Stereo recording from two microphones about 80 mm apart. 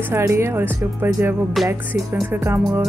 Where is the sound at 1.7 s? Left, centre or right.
Right.